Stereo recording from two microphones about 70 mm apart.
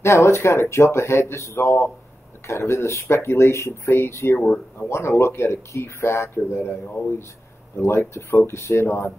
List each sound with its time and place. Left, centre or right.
0.0 s speech: left
4.4 s speech: left
4.8 s speech: left